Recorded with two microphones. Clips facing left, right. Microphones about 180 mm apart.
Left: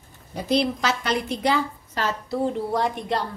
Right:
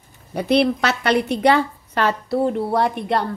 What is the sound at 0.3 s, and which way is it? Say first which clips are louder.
A woman's voice: right 5 dB; 65° right (ahead or behind).